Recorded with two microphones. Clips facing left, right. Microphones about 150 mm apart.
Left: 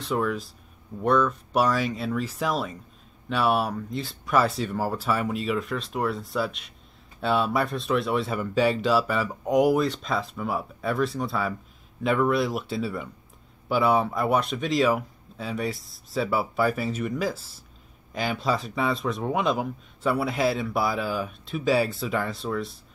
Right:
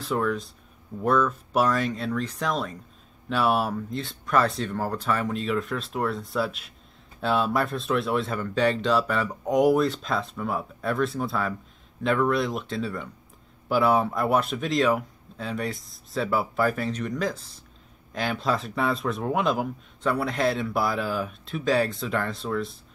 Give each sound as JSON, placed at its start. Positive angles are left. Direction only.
{"t": 0.0, "sound": "speech", "side_deg": 5}